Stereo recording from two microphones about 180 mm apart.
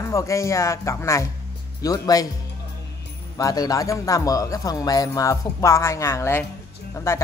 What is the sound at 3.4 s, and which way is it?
Speech, 20° left (ahead or behind).